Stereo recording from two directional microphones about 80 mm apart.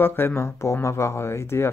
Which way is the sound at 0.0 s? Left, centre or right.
Left.